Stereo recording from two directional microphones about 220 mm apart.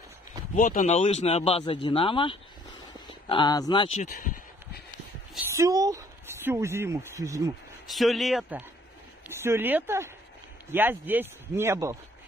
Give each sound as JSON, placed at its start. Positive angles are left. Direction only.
{"t": 0.6, "sound": "speech", "side_deg": 35}
{"t": 5.5, "sound": "speech", "side_deg": -15}
{"t": 7.8, "sound": "speech", "side_deg": 0}